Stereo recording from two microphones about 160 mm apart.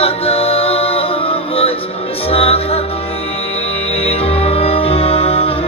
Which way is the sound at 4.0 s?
40° left (ahead or behind).